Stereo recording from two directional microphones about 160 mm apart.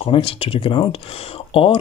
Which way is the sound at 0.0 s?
35° left (ahead or behind).